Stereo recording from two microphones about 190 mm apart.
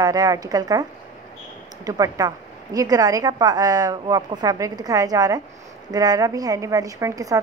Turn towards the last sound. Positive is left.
turn(degrees=-20)  # may be behind; listen again after turning